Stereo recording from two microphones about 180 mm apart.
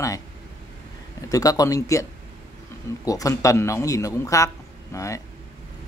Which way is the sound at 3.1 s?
20° left (ahead or behind).